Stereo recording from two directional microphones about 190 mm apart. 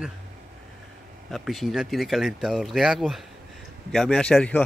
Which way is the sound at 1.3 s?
Centre (ahead or behind).